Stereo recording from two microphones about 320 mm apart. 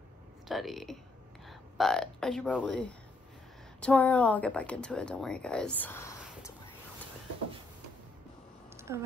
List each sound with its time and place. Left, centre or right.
0.5 s speech: centre
3.8 s speech: centre
8.7 s a sound: centre